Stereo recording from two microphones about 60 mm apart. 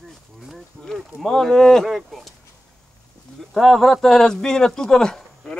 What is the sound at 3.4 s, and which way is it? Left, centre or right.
Speech, centre.